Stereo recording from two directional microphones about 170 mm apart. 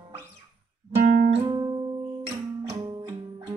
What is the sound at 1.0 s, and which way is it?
Music, 50° right (ahead or behind).